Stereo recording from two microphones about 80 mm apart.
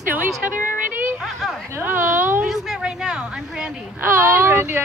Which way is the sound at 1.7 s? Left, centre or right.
Right.